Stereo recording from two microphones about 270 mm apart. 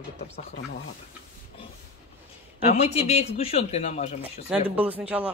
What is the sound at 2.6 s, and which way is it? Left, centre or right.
Speech, left.